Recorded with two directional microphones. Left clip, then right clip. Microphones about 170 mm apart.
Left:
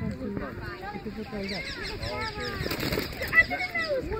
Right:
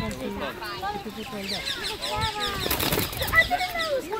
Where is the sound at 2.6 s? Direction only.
20° right (ahead or behind).